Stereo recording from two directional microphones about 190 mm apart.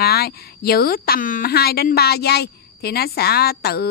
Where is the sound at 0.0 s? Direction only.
55° left (ahead or behind).